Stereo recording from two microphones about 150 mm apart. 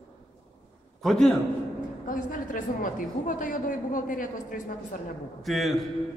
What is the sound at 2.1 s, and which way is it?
A woman's voice, 60° left (ahead or behind).